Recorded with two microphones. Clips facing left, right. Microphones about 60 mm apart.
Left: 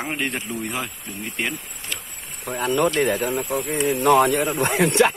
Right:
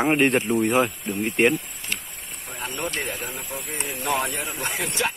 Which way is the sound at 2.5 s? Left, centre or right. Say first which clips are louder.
Left 10 dB; left.